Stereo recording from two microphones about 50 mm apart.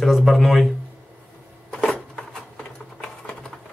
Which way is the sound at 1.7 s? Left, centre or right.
Centre.